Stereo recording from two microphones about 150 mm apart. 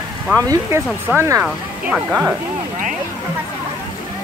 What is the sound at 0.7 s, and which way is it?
Speech, 15° right (ahead or behind).